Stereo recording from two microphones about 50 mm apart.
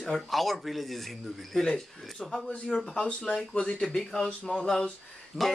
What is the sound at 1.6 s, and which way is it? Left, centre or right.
Speech, centre.